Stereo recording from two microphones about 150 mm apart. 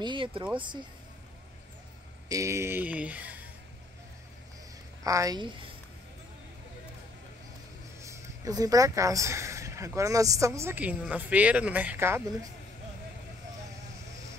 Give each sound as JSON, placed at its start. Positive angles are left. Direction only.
{"t": 0.0, "sound": "speech", "side_deg": -35}
{"t": 2.2, "sound": "speech", "side_deg": -20}
{"t": 5.0, "sound": "speech", "side_deg": -25}
{"t": 8.0, "sound": "speech", "side_deg": -20}